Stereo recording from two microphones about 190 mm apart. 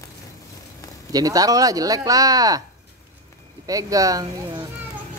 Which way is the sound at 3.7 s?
20° right (ahead or behind).